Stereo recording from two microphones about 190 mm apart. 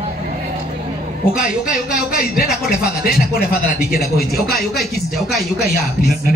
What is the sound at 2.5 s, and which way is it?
Speech, centre (ahead or behind).